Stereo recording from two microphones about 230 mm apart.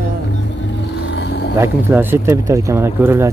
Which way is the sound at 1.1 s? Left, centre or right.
Left.